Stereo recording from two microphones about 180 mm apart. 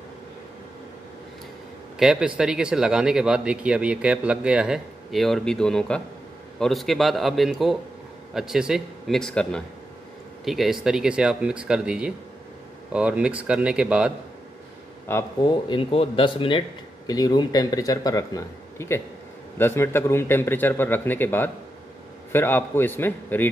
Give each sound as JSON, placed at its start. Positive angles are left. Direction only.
{"t": 2.0, "sound": "speech", "side_deg": -5}
{"t": 15.0, "sound": "a man's voice", "side_deg": 15}
{"t": 15.5, "sound": "a man's voice", "side_deg": 30}